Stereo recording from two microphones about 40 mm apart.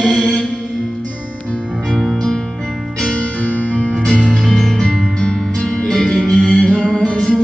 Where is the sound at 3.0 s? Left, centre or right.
Left.